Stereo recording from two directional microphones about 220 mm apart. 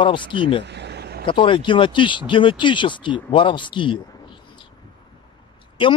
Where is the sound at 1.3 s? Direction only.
20° left (ahead or behind).